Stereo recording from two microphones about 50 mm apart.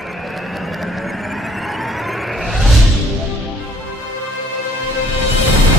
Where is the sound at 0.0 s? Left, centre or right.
Centre.